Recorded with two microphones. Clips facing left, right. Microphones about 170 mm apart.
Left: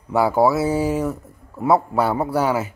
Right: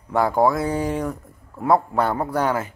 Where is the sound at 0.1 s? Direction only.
5° left (ahead or behind).